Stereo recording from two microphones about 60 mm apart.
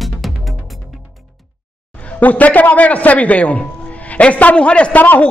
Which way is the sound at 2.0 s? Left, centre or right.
Left.